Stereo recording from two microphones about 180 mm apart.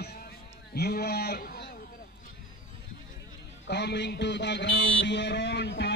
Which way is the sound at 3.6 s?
70° left (ahead or behind).